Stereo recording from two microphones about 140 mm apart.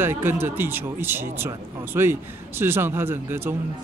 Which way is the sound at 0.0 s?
15° right (ahead or behind).